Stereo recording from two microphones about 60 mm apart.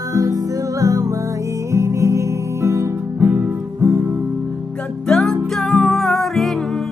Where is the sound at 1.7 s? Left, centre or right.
Right.